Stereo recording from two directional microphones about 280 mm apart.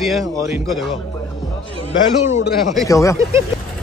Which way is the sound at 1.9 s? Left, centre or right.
Left.